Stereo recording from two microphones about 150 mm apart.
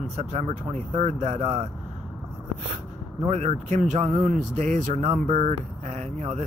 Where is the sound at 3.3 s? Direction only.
45° right (ahead or behind).